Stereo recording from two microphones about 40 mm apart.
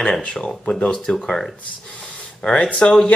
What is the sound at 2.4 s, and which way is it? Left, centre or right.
Speech, centre.